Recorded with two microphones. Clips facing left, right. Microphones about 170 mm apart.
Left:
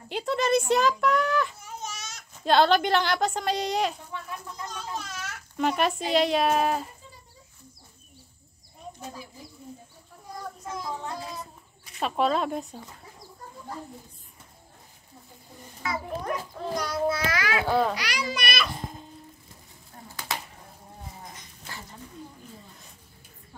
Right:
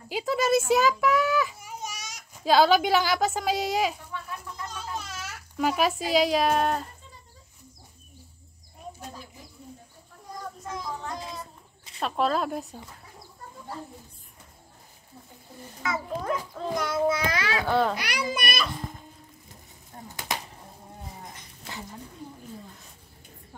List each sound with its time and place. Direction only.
0.1 s a sound: centre (ahead or behind)
2.4 s a child's voice: 5° right (ahead or behind)
9.0 s speech: 5° left (ahead or behind)
10.7 s child singing: 5° left (ahead or behind)
12.0 s speech: centre (ahead or behind)
15.9 s a child's voice: 20° right (ahead or behind)
17.6 s a child's voice: 5° left (ahead or behind)
17.9 s a child's voice: 55° right (ahead or behind)
19.9 s a sound: 30° right (ahead or behind)